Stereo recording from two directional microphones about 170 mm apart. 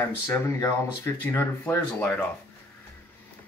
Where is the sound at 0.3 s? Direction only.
15° left (ahead or behind).